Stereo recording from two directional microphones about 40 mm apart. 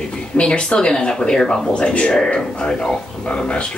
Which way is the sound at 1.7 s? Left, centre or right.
Left.